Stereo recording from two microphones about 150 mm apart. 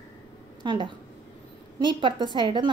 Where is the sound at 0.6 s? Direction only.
30° right (ahead or behind).